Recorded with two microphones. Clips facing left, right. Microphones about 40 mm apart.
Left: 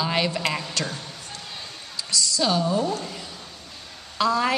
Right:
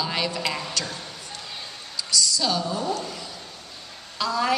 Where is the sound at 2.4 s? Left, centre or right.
Centre.